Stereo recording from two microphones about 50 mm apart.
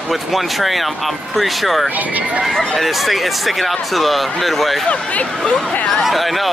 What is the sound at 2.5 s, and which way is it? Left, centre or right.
Speech, centre.